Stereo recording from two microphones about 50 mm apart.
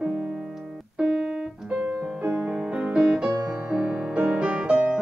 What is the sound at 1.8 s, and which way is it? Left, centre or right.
Music, right.